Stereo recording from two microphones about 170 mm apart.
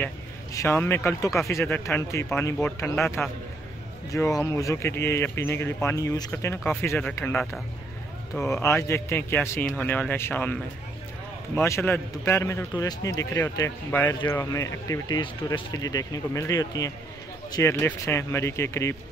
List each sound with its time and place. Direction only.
0.0 s speech: 15° left (ahead or behind)
8.5 s speech: 15° left (ahead or behind)